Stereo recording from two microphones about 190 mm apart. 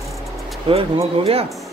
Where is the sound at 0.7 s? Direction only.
30° right (ahead or behind).